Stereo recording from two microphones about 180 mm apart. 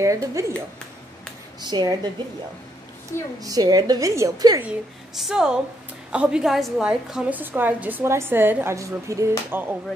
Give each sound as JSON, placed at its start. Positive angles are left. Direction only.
{"t": 0.0, "sound": "a woman's voice", "side_deg": -20}
{"t": 1.6, "sound": "a woman's voice", "side_deg": -25}
{"t": 3.1, "sound": "a woman's voice", "side_deg": 15}
{"t": 3.4, "sound": "a woman's voice", "side_deg": -20}
{"t": 4.6, "sound": "a woman's voice", "side_deg": 0}